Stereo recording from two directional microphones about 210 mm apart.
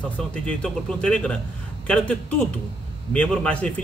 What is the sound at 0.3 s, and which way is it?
A man's voice, 5° left (ahead or behind).